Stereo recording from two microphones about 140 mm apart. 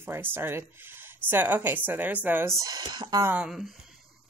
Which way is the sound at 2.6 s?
30° right (ahead or behind).